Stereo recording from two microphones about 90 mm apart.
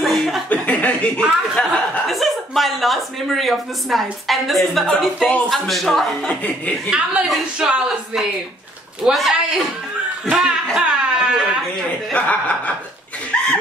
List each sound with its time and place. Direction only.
0.0 s a sound: centre (ahead or behind)
0.5 s chuckle: 15° left (ahead or behind)
1.6 s speech: centre (ahead or behind)
7.2 s speech: 10° right (ahead or behind)
12.1 s speech: 15° left (ahead or behind)
13.3 s laughter: 15° left (ahead or behind)